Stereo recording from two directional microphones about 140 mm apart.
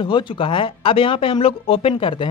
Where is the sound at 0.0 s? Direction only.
35° left (ahead or behind).